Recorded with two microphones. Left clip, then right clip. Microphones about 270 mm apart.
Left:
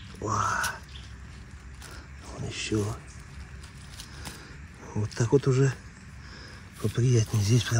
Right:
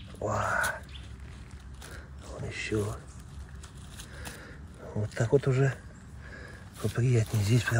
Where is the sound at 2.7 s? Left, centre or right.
Centre.